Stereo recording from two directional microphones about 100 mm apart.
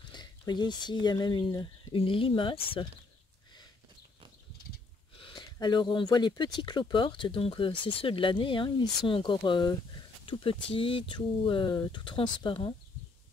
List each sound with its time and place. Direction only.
0.1 s speech: 45° left (ahead or behind)
2.0 s speech: 65° left (ahead or behind)
5.3 s speech: 45° left (ahead or behind)